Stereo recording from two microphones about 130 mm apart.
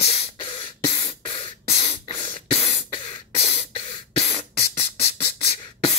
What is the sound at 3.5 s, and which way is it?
Beatboxing, 55° left (ahead or behind).